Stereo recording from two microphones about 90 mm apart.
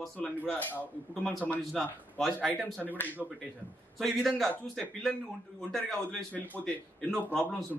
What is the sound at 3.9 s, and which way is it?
A man's voice, centre (ahead or behind).